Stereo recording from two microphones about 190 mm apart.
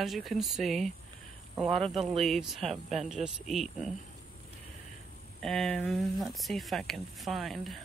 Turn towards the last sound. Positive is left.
turn(degrees=0)  # may be behind; listen again after turning